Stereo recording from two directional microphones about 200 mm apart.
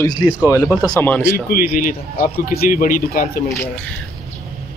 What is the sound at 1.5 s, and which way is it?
A man's voice, 45° left (ahead or behind).